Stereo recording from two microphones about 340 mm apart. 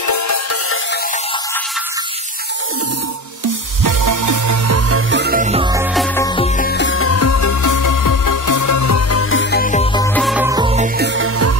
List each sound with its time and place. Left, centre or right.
0.0 s music: left
3.8 s music: right; by 5.9 s centre
5.9 s music: centre
10.0 s music: centre
11.0 s music: right